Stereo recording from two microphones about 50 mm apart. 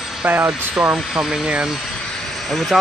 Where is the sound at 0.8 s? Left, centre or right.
Right.